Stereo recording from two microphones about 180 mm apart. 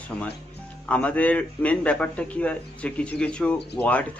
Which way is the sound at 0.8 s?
5° left (ahead or behind).